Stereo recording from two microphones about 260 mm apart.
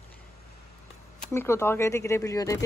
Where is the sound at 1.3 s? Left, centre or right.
Centre.